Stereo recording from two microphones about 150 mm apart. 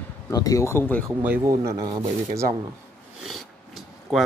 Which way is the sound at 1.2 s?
10° right (ahead or behind).